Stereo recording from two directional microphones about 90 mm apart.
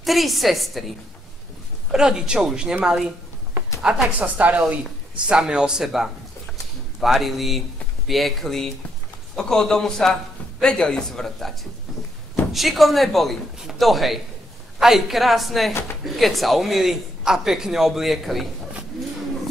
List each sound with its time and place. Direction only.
0.0 s a man's voice: centre (ahead or behind)
12.5 s a man's voice: centre (ahead or behind)